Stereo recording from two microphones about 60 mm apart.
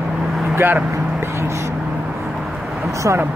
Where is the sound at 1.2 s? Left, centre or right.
Right.